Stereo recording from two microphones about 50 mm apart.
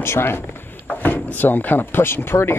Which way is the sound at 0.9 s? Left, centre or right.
Left.